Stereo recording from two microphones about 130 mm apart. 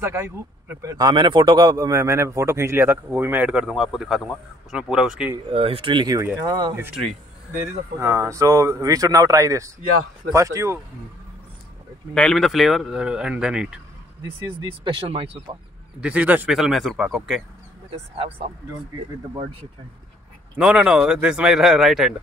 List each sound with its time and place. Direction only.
0.0 s a man's voice: 20° right (ahead or behind); by 5.3 s 5° right (ahead or behind)
5.5 s speech: 45° right (ahead or behind)
6.1 s a man's voice: 25° right (ahead or behind)
8.0 s a man's voice: 25° right (ahead or behind)
12.1 s speech: 5° left (ahead or behind)
14.2 s speech: 40° right (ahead or behind)
16.0 s speech: 10° right (ahead or behind)
16.5 s speech: centre (ahead or behind)
18.1 s speech: 45° right (ahead or behind)
20.5 s speech: 5° right (ahead or behind)